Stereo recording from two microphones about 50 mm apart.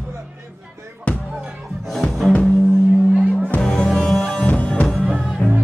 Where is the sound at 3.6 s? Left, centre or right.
Centre.